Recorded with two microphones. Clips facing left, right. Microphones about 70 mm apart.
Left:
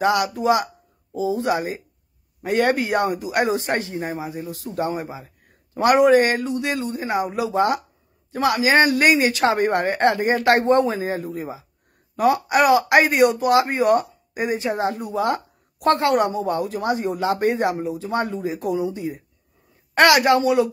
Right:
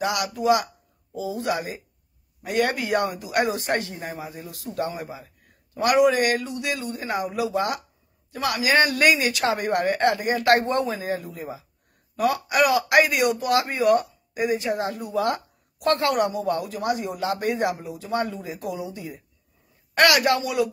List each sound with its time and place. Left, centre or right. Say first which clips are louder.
0.0 s speech: left 5 dB; left